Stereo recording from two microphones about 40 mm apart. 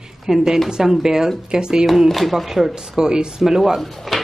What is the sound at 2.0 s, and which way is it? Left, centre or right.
Speech, centre.